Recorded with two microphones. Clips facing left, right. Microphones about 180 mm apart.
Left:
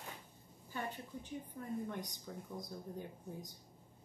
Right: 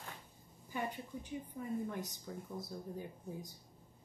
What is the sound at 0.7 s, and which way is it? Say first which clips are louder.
A woman's voice: right 3 dB; 10° right (ahead or behind).